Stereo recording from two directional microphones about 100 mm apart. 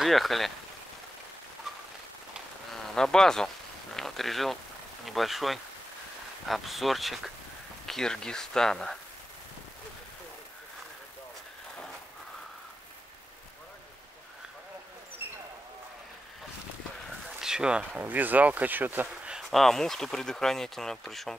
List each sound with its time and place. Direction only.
0.0 s speech: centre (ahead or behind)
2.7 s speech: 5° left (ahead or behind)
17.4 s speech: 5° right (ahead or behind)
19.3 s speech: centre (ahead or behind)